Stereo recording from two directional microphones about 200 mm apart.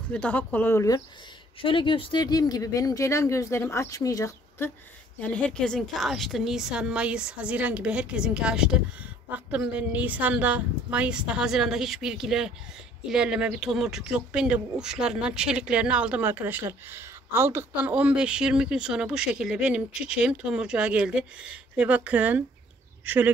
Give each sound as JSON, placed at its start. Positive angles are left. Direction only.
{"t": 0.1, "sound": "speech", "side_deg": 5}
{"t": 5.2, "sound": "speech", "side_deg": 5}